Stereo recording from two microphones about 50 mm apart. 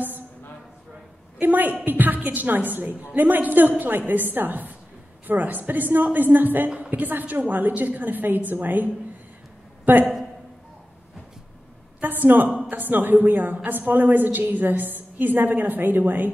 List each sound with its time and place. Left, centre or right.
1.4 s a woman's voice: right
12.0 s a sound: right
12.6 s a woman's voice: right